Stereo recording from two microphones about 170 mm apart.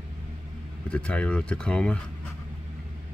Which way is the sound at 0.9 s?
5° left (ahead or behind).